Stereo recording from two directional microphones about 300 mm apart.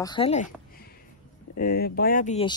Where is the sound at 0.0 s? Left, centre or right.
Centre.